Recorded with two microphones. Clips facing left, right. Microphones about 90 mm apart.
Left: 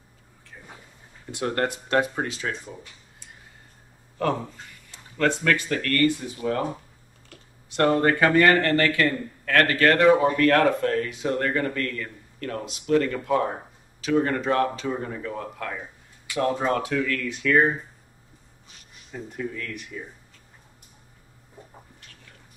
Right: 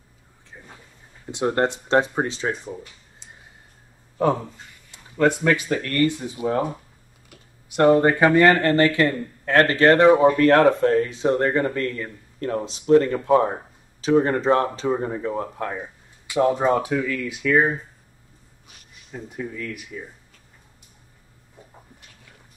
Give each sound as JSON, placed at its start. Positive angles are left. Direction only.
{"t": 1.3, "sound": "a man's voice", "side_deg": -20}
{"t": 5.1, "sound": "speech", "side_deg": -15}
{"t": 7.2, "sound": "a sound", "side_deg": -10}
{"t": 8.5, "sound": "a man's voice", "side_deg": -25}
{"t": 19.1, "sound": "speech", "side_deg": -5}